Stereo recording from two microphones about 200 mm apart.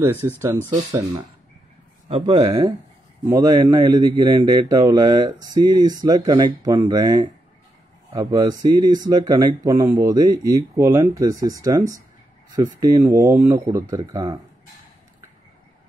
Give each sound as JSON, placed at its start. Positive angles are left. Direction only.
{"t": 0.2, "sound": "speech", "side_deg": -15}
{"t": 2.0, "sound": "a man's voice", "side_deg": -25}
{"t": 12.8, "sound": "speech", "side_deg": -15}